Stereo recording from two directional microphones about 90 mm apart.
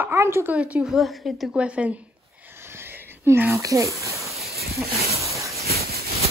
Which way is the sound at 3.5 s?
35° right (ahead or behind).